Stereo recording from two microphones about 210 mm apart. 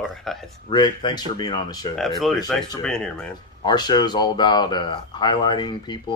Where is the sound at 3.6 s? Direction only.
20° left (ahead or behind).